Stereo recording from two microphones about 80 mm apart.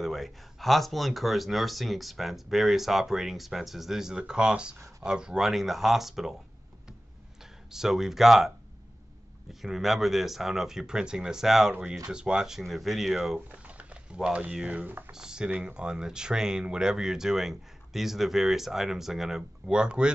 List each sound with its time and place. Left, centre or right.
0.0 s speech: centre
7.7 s speech: centre
13.5 s speech: centre
15.1 s speech: centre